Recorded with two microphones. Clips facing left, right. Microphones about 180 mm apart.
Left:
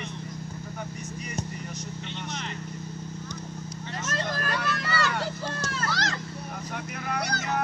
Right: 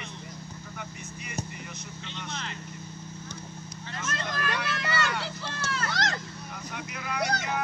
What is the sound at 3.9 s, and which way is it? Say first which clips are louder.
Vehicle: left 2 dB; 40° left (ahead or behind).